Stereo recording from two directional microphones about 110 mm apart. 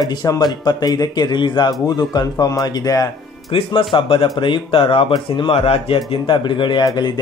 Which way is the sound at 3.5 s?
55° left (ahead or behind).